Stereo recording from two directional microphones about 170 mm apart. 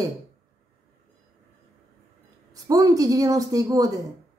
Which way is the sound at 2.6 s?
20° right (ahead or behind).